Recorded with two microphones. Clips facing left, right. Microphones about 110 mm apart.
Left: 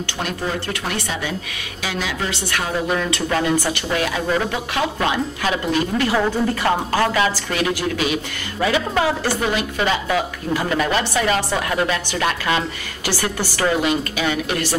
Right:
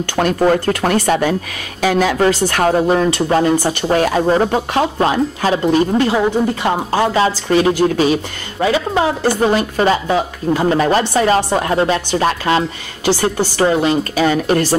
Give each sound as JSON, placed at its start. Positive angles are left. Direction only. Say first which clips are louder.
{"t": 0.7, "sound": "speech", "louder": "right 11 dB", "side_deg": -50}
{"t": 6.1, "sound": "speech", "louder": "right 4 dB", "side_deg": -20}